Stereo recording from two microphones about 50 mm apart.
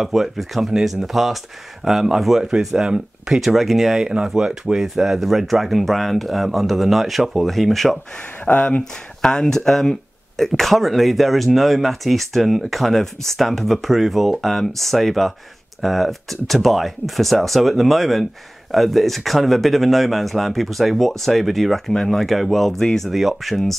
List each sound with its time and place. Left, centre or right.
0.0 s speech: centre
4.0 s speech: centre
8.5 s speech: left
9.2 s speech: centre
23.0 s speech: centre